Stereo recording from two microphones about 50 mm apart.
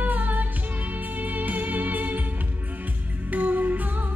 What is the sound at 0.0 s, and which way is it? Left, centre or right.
Music, right.